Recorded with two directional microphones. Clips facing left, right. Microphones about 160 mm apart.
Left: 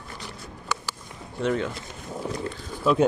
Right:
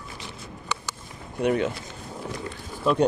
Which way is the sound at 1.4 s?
15° right (ahead or behind).